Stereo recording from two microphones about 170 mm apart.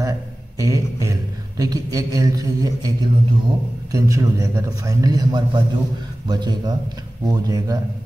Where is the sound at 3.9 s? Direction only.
20° right (ahead or behind).